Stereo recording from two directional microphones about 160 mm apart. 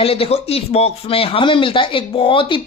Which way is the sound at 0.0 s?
35° left (ahead or behind).